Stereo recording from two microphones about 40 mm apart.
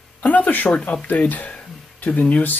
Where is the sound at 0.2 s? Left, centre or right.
Left.